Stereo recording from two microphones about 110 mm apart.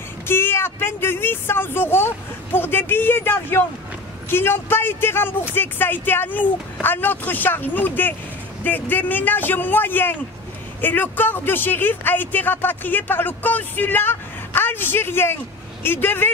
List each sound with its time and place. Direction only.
0.3 s speech: 20° left (ahead or behind)